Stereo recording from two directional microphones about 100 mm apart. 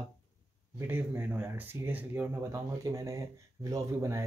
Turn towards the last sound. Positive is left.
turn(degrees=-30)  # may be behind; listen again after turning